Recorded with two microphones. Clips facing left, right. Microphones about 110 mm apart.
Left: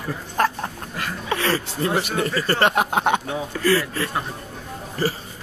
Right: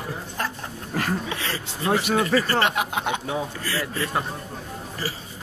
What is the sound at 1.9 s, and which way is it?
A man's voice, 45° left (ahead or behind).